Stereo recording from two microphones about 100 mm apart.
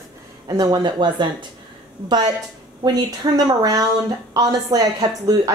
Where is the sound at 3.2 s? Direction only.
45° right (ahead or behind).